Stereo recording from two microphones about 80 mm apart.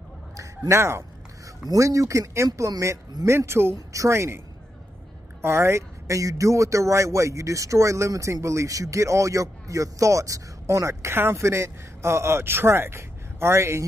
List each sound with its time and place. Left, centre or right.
0.4 s a man's voice: right
5.4 s speech: right